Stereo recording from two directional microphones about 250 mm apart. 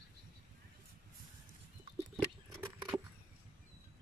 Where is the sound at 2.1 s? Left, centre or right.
Centre.